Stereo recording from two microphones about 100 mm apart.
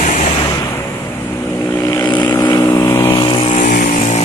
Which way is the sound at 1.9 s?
40° left (ahead or behind).